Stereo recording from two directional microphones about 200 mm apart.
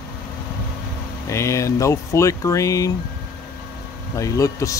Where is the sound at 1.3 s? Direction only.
15° left (ahead or behind).